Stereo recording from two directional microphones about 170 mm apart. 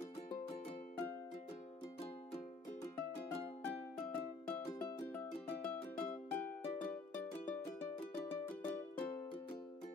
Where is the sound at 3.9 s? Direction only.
10° left (ahead or behind).